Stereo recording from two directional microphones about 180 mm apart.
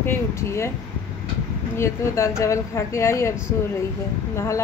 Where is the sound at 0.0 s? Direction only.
15° left (ahead or behind).